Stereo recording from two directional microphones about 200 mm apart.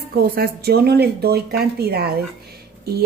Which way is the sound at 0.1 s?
50° right (ahead or behind).